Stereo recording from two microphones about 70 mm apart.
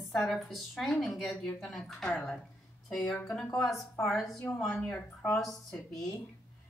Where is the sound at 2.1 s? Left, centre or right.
Left.